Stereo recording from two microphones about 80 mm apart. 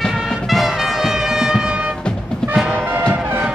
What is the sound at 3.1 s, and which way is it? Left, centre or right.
Music, centre.